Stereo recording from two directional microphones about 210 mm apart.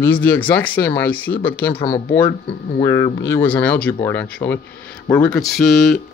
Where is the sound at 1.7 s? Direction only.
20° left (ahead or behind).